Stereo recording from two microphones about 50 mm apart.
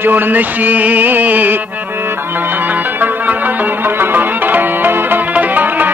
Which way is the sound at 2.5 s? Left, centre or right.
Right.